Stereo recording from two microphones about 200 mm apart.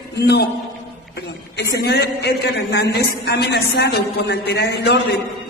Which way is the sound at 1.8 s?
55° left (ahead or behind).